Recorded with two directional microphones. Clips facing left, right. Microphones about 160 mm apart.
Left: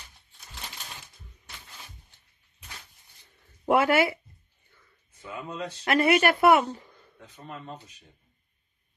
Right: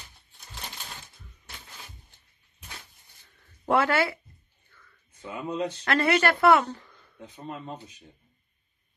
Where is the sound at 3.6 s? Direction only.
15° left (ahead or behind).